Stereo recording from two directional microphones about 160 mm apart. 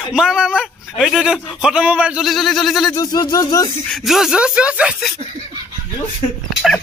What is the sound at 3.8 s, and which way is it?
Speech, centre (ahead or behind).